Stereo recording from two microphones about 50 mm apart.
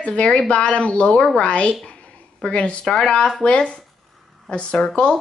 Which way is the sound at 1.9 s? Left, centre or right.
Left.